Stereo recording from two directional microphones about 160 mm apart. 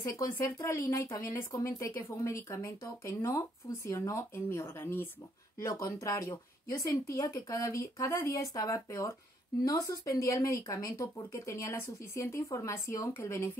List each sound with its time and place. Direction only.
0.1 s speech: 15° left (ahead or behind)